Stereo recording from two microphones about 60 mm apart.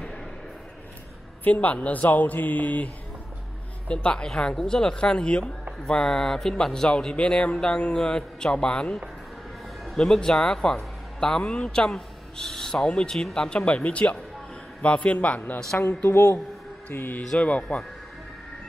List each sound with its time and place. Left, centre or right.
1.4 s speech: left
3.9 s speech: centre; by 17.2 s left
17.4 s speech: left